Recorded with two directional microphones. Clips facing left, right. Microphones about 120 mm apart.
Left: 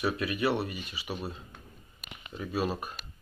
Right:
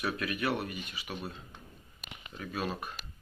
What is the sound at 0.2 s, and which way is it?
Speech, 30° left (ahead or behind).